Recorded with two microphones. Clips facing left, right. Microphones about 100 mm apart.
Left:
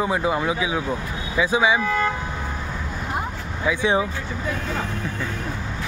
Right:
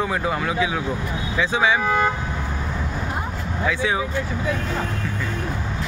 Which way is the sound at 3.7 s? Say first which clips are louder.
Left 2 dB; 20° left (ahead or behind).